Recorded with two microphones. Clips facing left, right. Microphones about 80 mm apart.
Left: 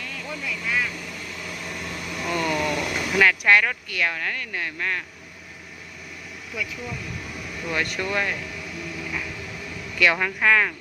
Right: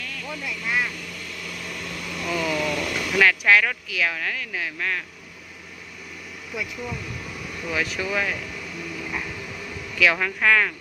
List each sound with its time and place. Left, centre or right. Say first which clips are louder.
0.5 s speech: even; centre
1.5 s vehicle: left 1 dB; centre
2.2 s vehicle: left 1 dB; centre
2.8 s vehicle: even; centre
3.1 s speech: even; centre
7.6 s speech: even; centre
9.0 s a sound: right 1 dB; centre
9.9 s speech: even; centre